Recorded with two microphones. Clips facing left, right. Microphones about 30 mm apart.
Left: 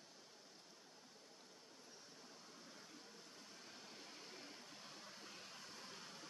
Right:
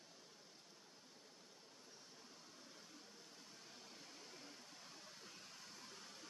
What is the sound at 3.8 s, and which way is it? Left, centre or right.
Vehicle, centre.